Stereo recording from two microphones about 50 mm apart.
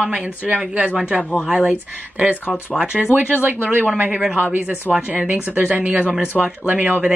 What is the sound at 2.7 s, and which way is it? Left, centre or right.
Speech, centre.